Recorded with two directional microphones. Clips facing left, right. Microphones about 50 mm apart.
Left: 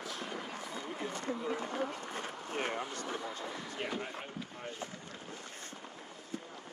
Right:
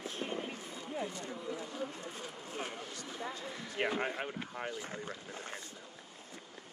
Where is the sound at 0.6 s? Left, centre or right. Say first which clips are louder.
Even; left.